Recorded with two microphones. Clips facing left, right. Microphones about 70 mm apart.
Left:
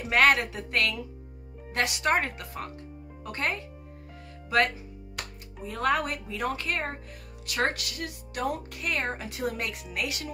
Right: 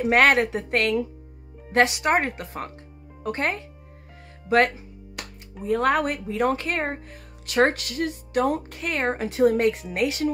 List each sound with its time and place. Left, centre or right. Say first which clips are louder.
0.1 s a woman's voice: right 3 dB; right
0.4 s speech: right 6 dB; right
2.0 s speech: right 4 dB; centre